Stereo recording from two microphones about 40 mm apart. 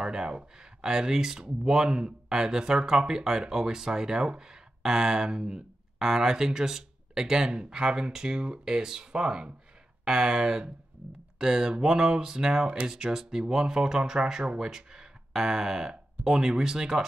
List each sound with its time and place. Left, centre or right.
0.0 s speech: centre
14.4 s speech: right